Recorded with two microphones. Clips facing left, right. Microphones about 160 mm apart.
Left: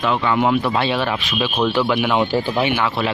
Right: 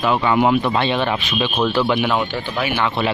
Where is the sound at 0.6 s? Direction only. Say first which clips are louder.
Right 1 dB; 5° left (ahead or behind).